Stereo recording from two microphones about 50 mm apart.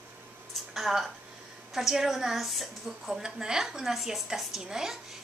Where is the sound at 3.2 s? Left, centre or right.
Centre.